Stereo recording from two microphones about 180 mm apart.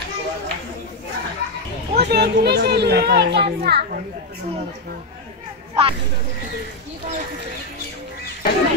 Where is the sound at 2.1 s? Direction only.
65° right (ahead or behind).